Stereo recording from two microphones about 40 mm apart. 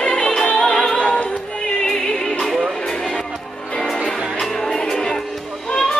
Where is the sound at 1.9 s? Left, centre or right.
Centre.